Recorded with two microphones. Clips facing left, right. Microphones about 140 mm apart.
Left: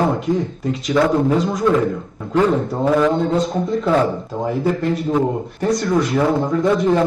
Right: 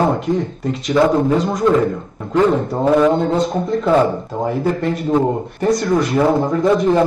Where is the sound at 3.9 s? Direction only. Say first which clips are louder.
Right 3 dB; 25° right (ahead or behind).